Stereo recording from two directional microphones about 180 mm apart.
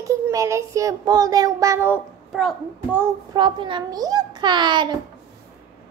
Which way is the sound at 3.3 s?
25° right (ahead or behind).